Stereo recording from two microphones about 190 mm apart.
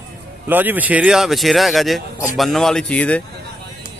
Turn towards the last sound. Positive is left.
turn(degrees=5)  # may be behind; listen again after turning